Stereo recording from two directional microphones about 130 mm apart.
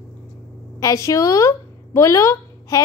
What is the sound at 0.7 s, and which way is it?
A woman's voice, 25° left (ahead or behind).